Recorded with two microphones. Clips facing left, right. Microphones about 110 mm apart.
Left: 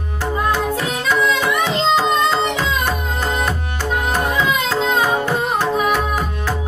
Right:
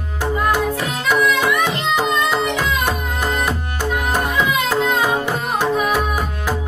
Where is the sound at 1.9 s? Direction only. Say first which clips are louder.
Left 2 dB; 15° right (ahead or behind).